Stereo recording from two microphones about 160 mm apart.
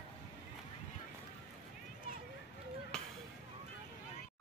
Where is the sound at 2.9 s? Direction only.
5° left (ahead or behind).